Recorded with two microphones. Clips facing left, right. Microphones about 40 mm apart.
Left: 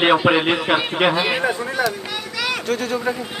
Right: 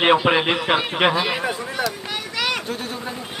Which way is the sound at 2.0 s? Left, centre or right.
Right.